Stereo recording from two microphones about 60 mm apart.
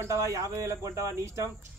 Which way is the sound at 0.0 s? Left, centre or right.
Right.